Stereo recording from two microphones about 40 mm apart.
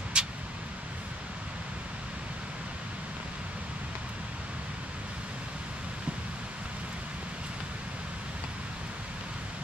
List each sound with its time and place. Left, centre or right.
0.2 s vehicle: right